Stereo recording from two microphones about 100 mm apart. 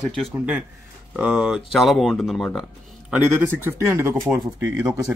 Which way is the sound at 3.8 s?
25° right (ahead or behind).